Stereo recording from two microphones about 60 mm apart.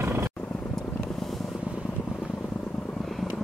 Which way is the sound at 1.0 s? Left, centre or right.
Centre.